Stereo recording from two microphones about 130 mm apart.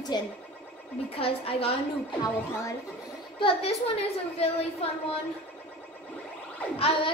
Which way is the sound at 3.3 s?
45° left (ahead or behind).